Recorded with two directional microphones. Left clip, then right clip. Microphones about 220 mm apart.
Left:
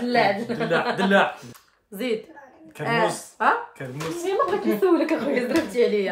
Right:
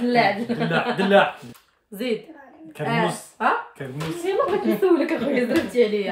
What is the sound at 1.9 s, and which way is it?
Speech, 25° left (ahead or behind).